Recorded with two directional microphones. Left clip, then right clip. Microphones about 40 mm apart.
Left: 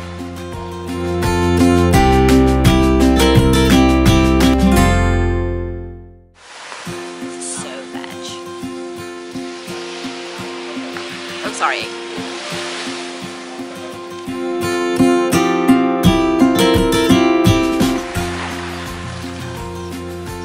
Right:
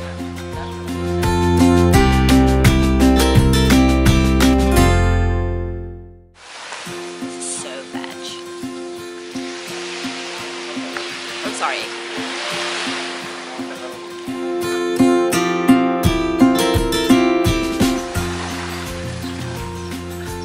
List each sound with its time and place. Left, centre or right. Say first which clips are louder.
1.0 s music: left 1 dB; centre
11.6 s music: left 4 dB; centre
12.2 s music: right 3 dB; centre
14.4 s music: left 2 dB; centre